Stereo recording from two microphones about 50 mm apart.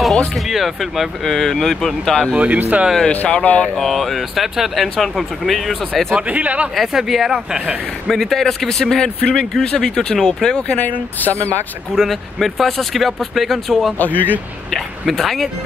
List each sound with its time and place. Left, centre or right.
0.5 s speech: centre
2.3 s speech: right
3.1 s speech: left
3.6 s speech: centre
6.1 s speech: right
6.7 s speech: centre
8.1 s speech: centre
9.2 s speech: left
10.8 s speech: left
11.9 s speech: centre
13.9 s speech: left
14.7 s speech: centre